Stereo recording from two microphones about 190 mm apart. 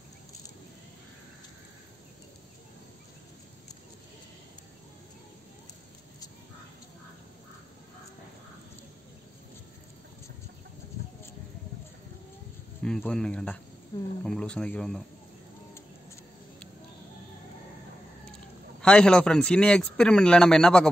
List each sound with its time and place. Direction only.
12.8 s a man's voice: 5° left (ahead or behind)
18.8 s a man's voice: 5° left (ahead or behind)